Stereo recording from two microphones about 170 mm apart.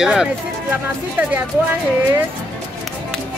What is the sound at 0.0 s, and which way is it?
Speech, 5° right (ahead or behind).